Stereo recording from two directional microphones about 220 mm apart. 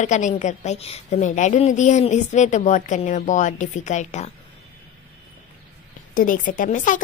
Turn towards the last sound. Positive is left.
turn(degrees=35)  # may be behind; listen again after turning